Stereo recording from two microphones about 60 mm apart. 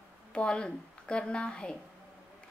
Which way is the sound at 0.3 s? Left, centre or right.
Centre.